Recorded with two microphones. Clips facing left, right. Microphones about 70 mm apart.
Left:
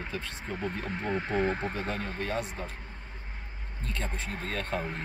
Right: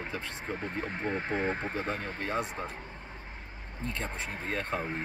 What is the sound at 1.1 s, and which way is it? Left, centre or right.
Speech, right.